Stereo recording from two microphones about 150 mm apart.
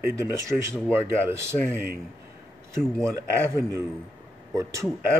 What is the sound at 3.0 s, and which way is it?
Speech, 20° right (ahead or behind).